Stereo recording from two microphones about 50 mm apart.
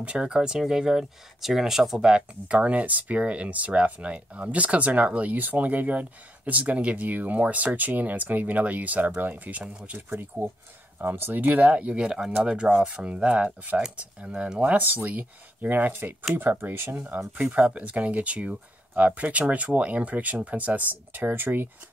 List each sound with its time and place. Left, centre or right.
0.0 s speech: centre
2.4 s speech: right
9.9 s speech: right
17.6 s speech: right